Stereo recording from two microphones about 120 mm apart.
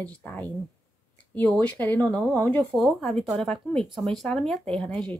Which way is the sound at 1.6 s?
15° left (ahead or behind).